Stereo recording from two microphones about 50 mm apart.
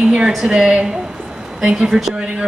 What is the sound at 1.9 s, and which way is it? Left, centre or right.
Speech, centre.